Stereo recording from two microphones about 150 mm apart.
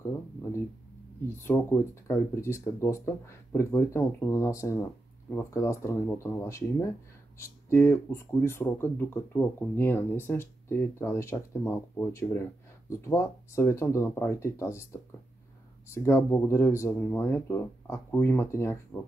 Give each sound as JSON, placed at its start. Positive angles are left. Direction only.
{"t": 1.4, "sound": "speech", "side_deg": 15}